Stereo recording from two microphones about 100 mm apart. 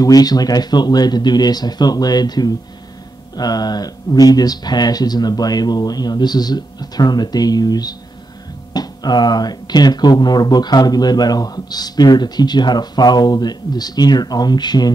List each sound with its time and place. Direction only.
0.0 s speech: 40° left (ahead or behind)